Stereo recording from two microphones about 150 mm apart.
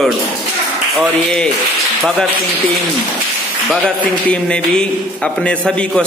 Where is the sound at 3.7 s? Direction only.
5° left (ahead or behind).